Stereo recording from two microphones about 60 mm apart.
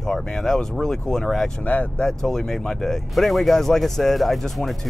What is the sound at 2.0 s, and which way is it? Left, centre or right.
Speech, centre.